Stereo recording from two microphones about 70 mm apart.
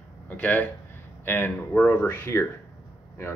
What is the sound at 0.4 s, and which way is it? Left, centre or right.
Speech, left.